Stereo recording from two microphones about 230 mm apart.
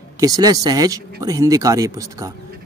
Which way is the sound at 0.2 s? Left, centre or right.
Centre.